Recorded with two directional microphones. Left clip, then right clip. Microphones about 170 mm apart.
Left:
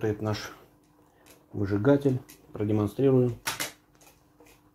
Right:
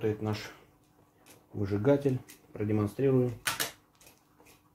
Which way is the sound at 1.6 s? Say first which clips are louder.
Left 3 dB; 25° left (ahead or behind).